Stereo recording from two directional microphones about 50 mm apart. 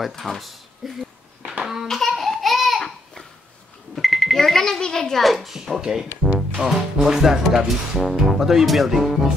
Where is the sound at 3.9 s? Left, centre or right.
Centre.